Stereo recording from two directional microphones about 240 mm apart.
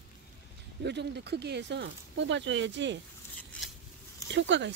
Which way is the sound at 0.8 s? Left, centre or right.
Right.